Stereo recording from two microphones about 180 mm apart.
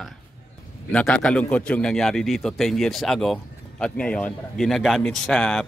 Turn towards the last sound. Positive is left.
turn(degrees=5)  # may be behind; listen again after turning